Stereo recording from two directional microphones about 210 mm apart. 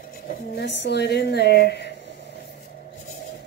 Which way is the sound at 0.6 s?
55° left (ahead or behind).